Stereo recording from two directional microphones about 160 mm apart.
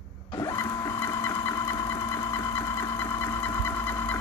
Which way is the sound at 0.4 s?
20° left (ahead or behind).